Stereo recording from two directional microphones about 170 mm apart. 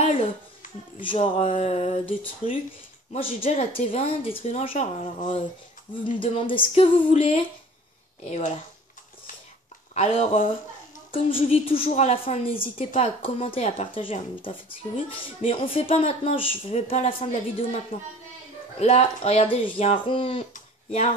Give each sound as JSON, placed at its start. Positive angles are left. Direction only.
{"t": 1.0, "sound": "a woman's voice", "side_deg": 30}
{"t": 9.9, "sound": "a woman's voice", "side_deg": 40}
{"t": 20.5, "sound": "a sound", "side_deg": 40}